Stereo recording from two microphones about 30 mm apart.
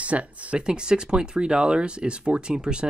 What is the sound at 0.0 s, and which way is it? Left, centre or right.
Speech, right.